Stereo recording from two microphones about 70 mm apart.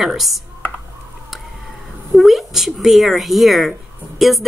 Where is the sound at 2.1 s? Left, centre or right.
Centre.